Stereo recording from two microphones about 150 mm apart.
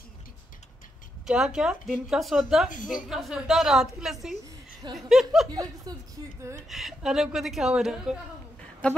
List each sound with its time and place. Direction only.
1.2 s a woman's voice: 5° right (ahead or behind)
4.8 s speech: 30° right (ahead or behind)
6.7 s a woman's voice: centre (ahead or behind)
8.8 s a sound: 10° left (ahead or behind)